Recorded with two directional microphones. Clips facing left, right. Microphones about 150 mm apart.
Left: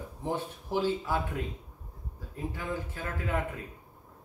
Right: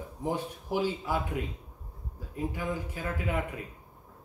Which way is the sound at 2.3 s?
10° right (ahead or behind).